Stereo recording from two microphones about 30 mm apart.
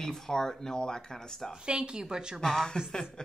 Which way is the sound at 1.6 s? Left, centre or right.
Right.